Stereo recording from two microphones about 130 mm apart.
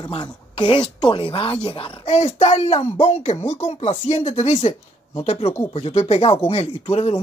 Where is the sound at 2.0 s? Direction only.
55° left (ahead or behind).